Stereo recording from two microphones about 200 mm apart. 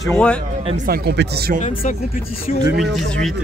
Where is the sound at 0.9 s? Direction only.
55° right (ahead or behind).